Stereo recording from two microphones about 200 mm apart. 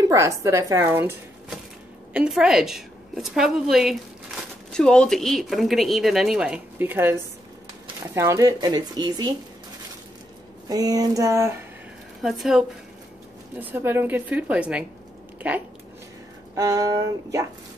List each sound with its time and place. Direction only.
0.1 s speech: 15° right (ahead or behind)
2.1 s speech: 5° right (ahead or behind); by 9.3 s 20° right (ahead or behind)
10.7 s speech: 20° right (ahead or behind)
12.2 s speech: centre (ahead or behind)
15.3 s a sound: 5° right (ahead or behind)
16.5 s speech: 20° right (ahead or behind)